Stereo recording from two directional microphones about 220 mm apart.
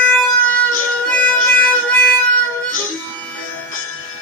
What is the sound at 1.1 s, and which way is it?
Music, 5° left (ahead or behind).